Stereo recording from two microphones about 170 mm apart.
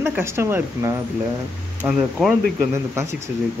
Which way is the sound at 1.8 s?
5° right (ahead or behind).